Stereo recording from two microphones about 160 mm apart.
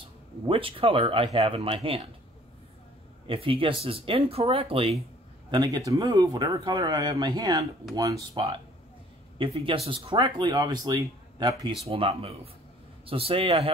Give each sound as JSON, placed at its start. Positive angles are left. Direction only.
{"t": 0.5, "sound": "speech", "side_deg": -35}
{"t": 3.3, "sound": "speech", "side_deg": -35}
{"t": 5.5, "sound": "speech", "side_deg": -25}
{"t": 9.4, "sound": "speech", "side_deg": -35}